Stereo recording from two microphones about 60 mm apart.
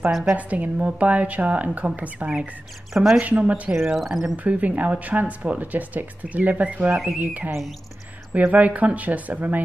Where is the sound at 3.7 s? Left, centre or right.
Centre.